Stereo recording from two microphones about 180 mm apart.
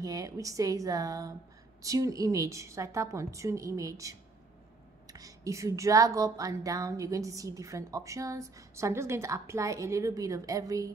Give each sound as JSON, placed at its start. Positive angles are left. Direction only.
{"t": 0.0, "sound": "a woman's voice", "side_deg": -20}